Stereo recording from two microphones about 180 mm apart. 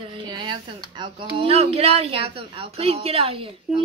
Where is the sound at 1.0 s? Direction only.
25° right (ahead or behind).